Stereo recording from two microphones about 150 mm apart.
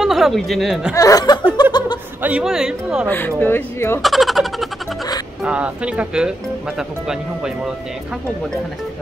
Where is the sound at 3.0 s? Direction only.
15° left (ahead or behind).